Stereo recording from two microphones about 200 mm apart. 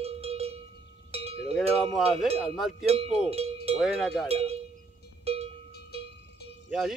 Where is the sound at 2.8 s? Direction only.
30° right (ahead or behind).